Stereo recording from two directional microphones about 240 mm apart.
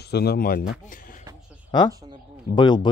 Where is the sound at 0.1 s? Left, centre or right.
Left.